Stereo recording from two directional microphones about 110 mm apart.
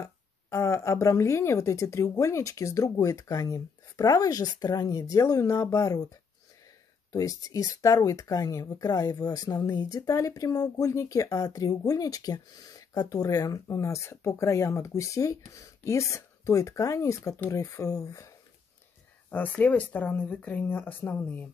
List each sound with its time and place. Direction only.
0.0 s speech: 30° left (ahead or behind)
7.1 s speech: 30° left (ahead or behind)
19.3 s speech: 15° left (ahead or behind)